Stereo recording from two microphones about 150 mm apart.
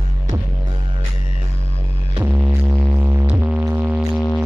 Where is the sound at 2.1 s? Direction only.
10° right (ahead or behind).